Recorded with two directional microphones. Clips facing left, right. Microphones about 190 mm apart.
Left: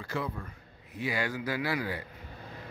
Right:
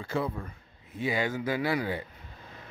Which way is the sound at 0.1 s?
30° right (ahead or behind).